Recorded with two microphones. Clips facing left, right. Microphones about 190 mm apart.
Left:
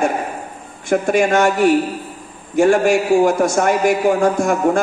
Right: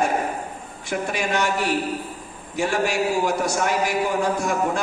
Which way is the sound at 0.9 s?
50° left (ahead or behind).